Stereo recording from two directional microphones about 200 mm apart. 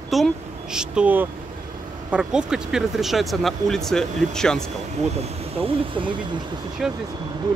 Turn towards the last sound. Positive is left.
turn(degrees=0)  # may be behind; listen again after turning